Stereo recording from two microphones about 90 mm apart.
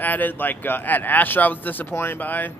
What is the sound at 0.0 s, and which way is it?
Speech, 20° left (ahead or behind).